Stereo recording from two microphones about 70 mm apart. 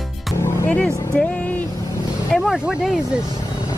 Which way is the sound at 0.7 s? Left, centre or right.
Centre.